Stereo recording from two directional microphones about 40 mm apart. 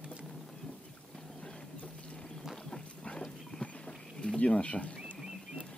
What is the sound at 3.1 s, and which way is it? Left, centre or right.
Clip-clop, left.